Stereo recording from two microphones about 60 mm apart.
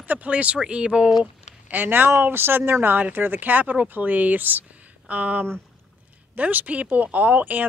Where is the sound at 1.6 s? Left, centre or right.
Right.